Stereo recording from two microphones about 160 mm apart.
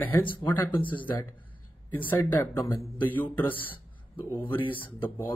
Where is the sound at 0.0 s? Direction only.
10° left (ahead or behind).